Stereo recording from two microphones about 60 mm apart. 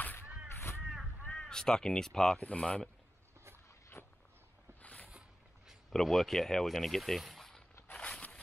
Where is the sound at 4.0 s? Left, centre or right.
Left.